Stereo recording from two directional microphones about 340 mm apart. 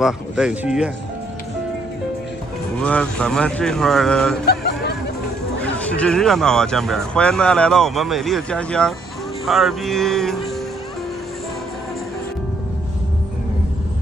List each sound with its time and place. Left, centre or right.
0.0 s speech: centre
2.8 s speech: centre
4.5 s a sound: left
5.6 s speech: centre